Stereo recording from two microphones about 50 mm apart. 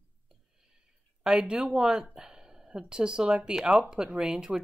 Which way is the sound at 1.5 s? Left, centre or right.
Centre.